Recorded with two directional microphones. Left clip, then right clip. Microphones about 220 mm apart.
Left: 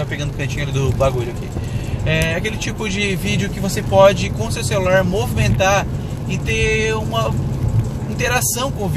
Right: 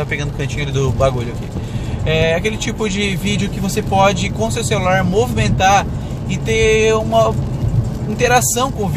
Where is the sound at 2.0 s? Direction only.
20° right (ahead or behind).